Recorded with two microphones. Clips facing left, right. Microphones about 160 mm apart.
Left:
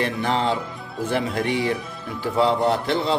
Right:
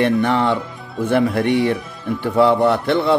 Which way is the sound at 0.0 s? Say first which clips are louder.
Right 6 dB; 60° right (ahead or behind).